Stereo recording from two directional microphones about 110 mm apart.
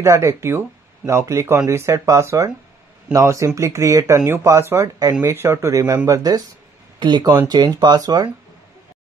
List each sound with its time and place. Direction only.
0.0 s speech: 25° right (ahead or behind)